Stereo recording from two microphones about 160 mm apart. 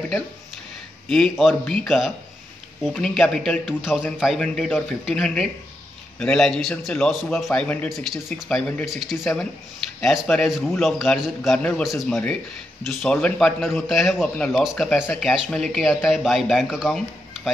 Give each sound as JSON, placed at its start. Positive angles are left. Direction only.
{"t": 1.0, "sound": "a man's voice", "side_deg": 5}